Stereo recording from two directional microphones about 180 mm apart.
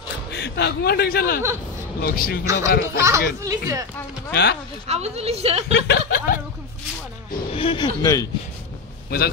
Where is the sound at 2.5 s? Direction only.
15° right (ahead or behind).